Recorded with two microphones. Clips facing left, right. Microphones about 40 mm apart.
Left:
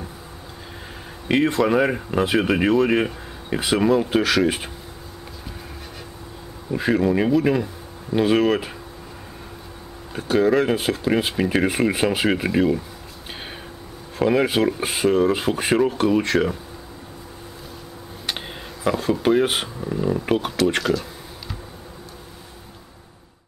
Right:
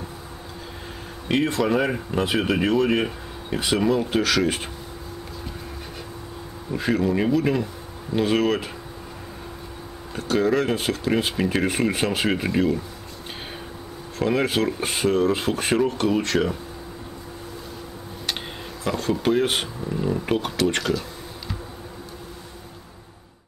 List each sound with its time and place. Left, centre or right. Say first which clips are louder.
1.3 s speech: left 3 dB; centre
6.7 s speech: left 3 dB; centre
10.1 s speech: left 3 dB; centre
14.1 s speech: left 3 dB; centre
18.9 s speech: left 3 dB; centre